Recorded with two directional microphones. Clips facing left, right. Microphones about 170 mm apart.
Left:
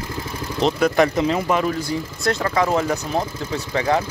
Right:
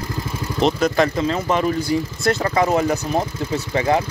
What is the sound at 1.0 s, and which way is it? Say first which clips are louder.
Speech: left 1 dB; 15° left (ahead or behind).